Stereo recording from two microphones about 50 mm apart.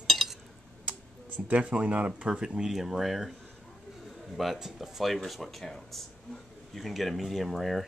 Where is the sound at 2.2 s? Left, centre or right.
Centre.